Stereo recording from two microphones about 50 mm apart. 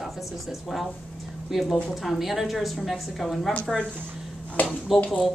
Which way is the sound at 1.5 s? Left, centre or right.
Centre.